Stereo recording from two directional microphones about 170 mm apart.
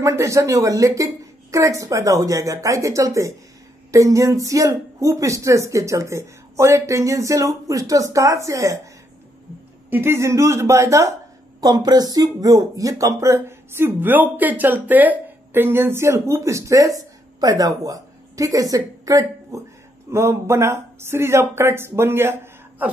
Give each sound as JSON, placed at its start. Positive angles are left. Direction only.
{"t": 0.0, "sound": "speech", "side_deg": -15}
{"t": 9.8, "sound": "a woman's voice", "side_deg": -15}